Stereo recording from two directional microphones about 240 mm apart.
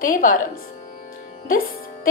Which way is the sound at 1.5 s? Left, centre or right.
Left.